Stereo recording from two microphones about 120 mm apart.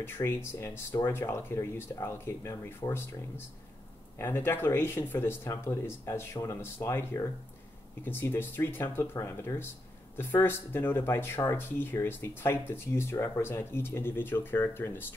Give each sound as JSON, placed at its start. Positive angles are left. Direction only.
{"t": 0.0, "sound": "speech", "side_deg": 20}